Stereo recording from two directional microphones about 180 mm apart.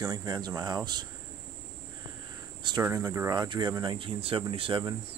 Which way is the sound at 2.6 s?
25° right (ahead or behind).